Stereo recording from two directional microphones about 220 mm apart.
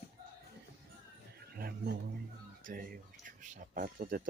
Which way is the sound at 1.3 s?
45° right (ahead or behind).